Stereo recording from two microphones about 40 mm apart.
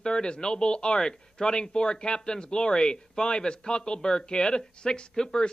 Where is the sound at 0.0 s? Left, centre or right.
Left.